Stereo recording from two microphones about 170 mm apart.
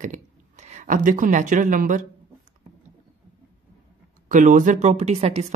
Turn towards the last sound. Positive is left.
turn(degrees=-40)  # may be behind; listen again after turning